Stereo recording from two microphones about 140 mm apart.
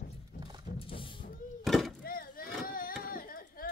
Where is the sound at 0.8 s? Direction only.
40° left (ahead or behind).